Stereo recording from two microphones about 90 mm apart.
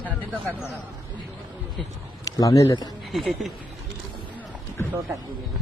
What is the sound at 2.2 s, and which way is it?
Speech, 40° left (ahead or behind).